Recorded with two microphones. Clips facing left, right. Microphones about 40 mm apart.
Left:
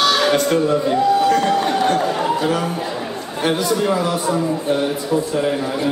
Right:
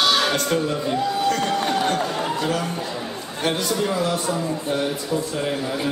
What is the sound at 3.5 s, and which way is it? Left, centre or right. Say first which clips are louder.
Speech: left 5 dB; centre.